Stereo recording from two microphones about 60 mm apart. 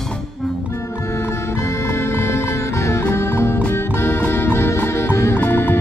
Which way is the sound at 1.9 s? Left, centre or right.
Left.